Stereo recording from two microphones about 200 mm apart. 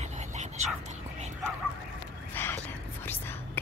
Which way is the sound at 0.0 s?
35° right (ahead or behind).